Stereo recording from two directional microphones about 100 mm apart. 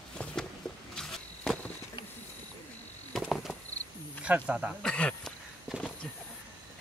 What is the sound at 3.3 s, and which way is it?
Mouse, centre (ahead or behind).